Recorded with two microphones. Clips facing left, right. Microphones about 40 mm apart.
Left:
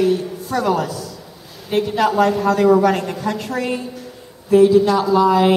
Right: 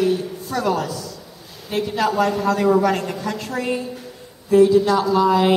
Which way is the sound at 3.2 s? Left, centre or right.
Left.